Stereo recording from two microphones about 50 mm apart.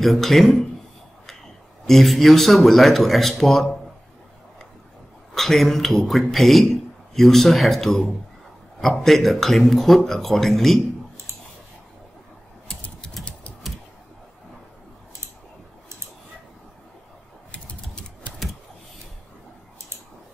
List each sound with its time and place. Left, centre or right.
0.0 s speech: centre
1.9 s speech: centre
5.3 s speech: centre
17.5 s a sound: left